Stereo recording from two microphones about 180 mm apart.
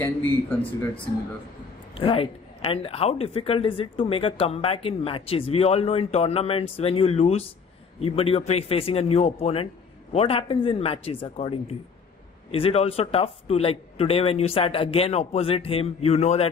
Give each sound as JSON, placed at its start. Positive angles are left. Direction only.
{"t": 0.6, "sound": "speech", "side_deg": 30}